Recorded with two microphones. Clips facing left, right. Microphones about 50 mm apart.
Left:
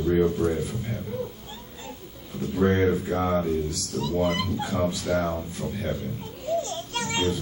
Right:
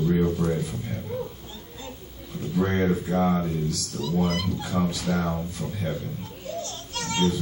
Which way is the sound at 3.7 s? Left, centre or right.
Left.